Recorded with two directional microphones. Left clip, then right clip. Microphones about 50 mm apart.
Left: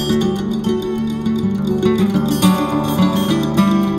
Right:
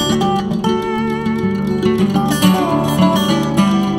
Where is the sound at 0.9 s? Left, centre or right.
Right.